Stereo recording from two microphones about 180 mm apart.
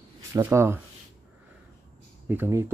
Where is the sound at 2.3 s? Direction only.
15° right (ahead or behind).